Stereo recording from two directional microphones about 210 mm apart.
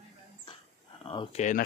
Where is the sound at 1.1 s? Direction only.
25° left (ahead or behind).